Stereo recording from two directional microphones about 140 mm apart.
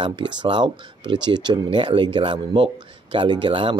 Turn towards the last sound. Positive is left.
turn(degrees=-35)  # may be behind; listen again after turning